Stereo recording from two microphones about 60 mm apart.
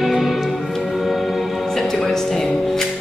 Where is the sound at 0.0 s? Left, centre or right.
Centre.